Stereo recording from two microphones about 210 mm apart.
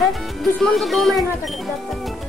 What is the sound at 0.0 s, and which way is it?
Speech, centre (ahead or behind).